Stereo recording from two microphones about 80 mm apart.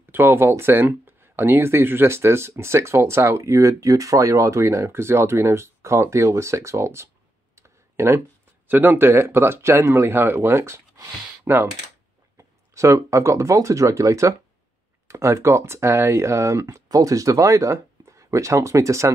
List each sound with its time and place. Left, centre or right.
0.1 s speech: right
7.5 s clicking: right
8.6 s speech: right
12.4 s speech: right